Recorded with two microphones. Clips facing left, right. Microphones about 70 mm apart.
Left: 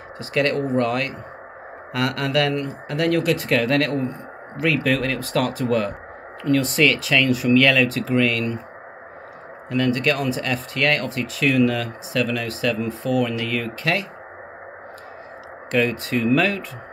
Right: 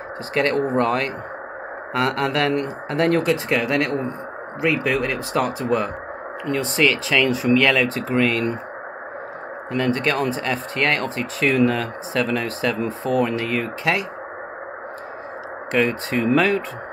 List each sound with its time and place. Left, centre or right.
0.3 s speech: right
9.7 s speech: right
15.7 s speech: right